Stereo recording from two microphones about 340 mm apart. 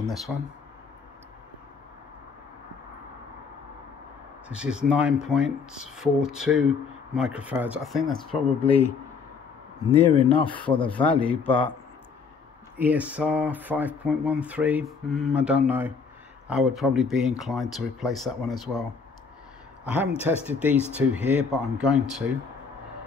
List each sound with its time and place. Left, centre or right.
0.0 s speech: centre
4.5 s speech: centre
8.6 s speech: centre
10.1 s speech: centre
12.7 s speech: centre